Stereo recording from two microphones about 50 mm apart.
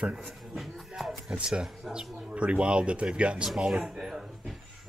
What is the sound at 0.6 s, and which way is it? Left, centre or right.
Music, centre.